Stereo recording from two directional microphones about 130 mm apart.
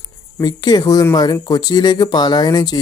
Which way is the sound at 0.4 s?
30° left (ahead or behind).